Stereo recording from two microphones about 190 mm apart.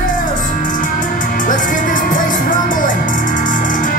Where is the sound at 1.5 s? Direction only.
45° left (ahead or behind).